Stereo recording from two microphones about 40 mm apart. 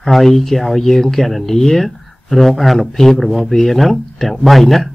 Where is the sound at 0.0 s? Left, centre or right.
Centre.